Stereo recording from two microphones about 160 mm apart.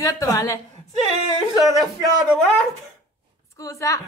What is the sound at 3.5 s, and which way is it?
Speech, 20° left (ahead or behind).